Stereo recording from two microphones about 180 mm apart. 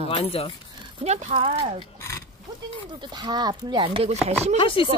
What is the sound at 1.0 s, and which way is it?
Speech, 35° right (ahead or behind).